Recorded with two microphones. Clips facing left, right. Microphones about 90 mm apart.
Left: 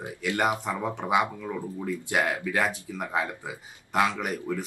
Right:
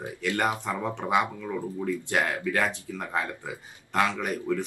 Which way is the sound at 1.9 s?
15° left (ahead or behind).